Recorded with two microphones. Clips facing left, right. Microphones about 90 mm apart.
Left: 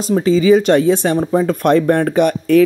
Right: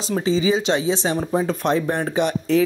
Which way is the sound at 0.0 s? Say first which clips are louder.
Left 7 dB; 50° left (ahead or behind).